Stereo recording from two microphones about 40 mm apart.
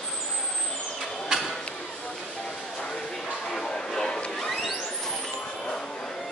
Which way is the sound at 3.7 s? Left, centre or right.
Centre.